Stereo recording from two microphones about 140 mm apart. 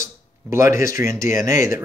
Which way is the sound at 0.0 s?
20° right (ahead or behind).